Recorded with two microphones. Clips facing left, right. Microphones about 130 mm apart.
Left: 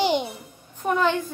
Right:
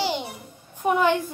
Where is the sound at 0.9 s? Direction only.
15° right (ahead or behind).